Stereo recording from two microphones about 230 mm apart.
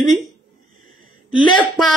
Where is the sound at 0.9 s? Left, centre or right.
Centre.